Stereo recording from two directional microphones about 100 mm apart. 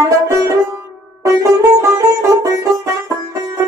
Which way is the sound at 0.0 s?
30° right (ahead or behind).